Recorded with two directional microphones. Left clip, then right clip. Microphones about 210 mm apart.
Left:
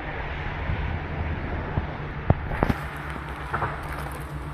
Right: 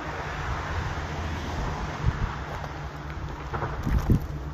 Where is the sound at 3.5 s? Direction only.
25° left (ahead or behind).